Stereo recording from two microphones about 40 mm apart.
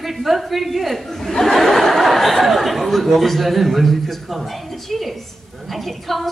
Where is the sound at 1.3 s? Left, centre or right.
Centre.